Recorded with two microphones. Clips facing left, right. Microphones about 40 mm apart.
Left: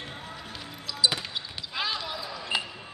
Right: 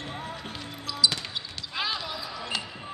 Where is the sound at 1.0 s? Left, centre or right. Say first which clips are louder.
Even; left.